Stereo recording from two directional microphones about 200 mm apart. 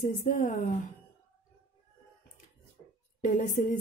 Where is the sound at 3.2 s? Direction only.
40° left (ahead or behind).